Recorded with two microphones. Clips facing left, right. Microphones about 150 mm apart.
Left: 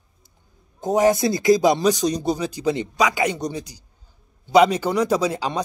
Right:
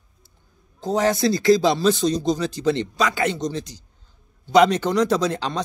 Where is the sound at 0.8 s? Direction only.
20° left (ahead or behind).